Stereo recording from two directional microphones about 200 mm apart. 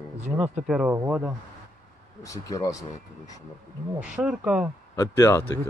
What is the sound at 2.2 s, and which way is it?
Speech, 15° left (ahead or behind).